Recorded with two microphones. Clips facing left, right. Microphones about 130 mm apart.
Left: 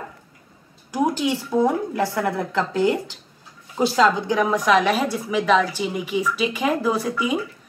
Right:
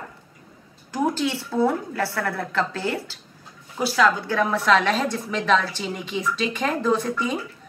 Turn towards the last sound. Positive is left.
turn(degrees=10)  # may be behind; listen again after turning